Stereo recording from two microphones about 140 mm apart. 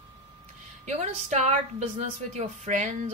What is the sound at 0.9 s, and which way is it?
Speech, 55° right (ahead or behind).